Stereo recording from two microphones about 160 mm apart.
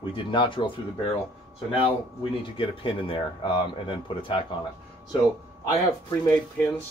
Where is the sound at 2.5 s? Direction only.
35° left (ahead or behind).